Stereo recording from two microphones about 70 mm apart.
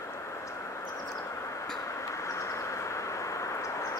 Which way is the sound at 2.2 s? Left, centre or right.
Left.